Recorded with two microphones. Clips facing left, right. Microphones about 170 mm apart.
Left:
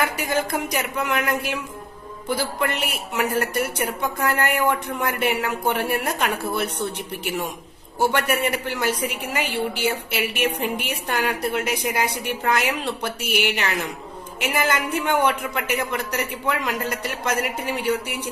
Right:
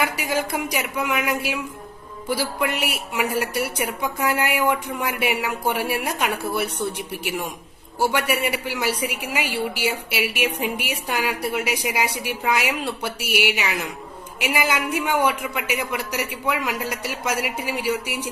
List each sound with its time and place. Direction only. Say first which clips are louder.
0.0 s a woman's voice: even; 10° right (ahead or behind)